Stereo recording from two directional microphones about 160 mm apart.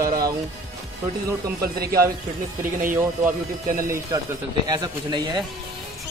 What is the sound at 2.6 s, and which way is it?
Speech, 55° right (ahead or behind).